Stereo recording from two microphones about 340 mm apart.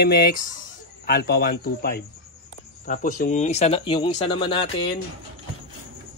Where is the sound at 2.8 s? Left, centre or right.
Left.